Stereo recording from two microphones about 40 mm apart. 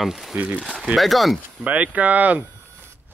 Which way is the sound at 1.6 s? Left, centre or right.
Right.